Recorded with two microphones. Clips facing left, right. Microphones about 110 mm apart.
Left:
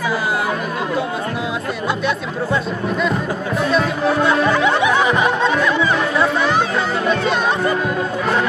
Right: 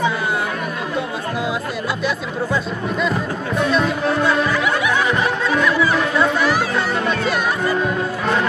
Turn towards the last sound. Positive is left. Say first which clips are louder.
# left 2 dB
turn(degrees=0)  # may be behind; listen again after turning